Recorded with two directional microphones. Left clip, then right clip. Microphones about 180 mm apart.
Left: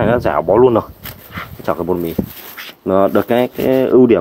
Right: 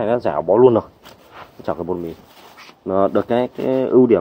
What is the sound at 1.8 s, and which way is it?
Speech, 20° left (ahead or behind).